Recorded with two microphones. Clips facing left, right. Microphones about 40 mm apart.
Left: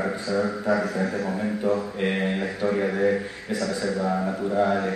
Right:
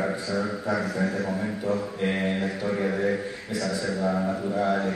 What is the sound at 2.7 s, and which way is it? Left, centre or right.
Speech, centre.